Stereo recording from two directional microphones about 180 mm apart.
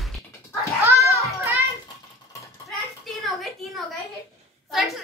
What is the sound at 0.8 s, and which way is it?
Children playing, 15° right (ahead or behind).